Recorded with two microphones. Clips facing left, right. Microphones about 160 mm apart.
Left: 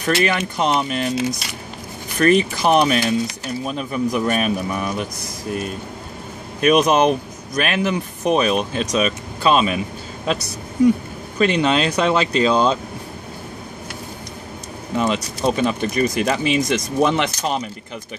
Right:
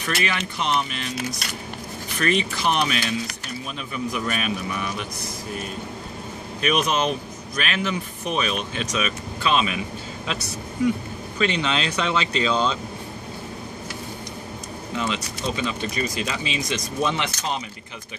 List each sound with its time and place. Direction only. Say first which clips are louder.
0.2 s speech: left 7 dB; 45° left (ahead or behind)
6.6 s speech: left 8 dB; 40° left (ahead or behind)
15.0 s speech: left 7 dB; 45° left (ahead or behind)